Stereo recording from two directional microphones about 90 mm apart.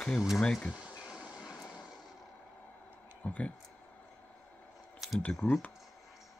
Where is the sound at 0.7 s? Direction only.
10° right (ahead or behind).